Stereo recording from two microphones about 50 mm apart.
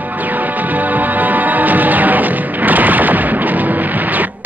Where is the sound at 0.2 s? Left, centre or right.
Right.